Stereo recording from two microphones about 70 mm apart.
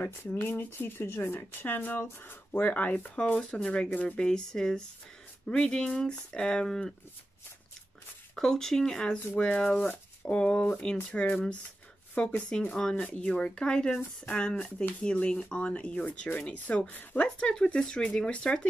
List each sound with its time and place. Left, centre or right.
0.0 s speech: left
3.3 s speech: centre
8.4 s speech: centre